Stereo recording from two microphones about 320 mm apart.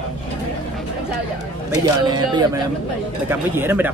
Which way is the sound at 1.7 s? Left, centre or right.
Centre.